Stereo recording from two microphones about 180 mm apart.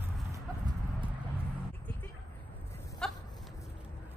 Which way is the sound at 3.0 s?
5° left (ahead or behind).